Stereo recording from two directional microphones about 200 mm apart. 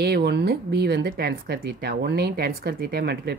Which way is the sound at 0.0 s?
55° right (ahead or behind).